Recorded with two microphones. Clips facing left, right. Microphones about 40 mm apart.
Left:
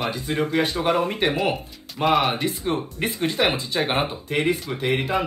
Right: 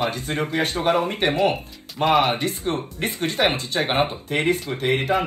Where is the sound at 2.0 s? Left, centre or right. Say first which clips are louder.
Right 1 dB; centre.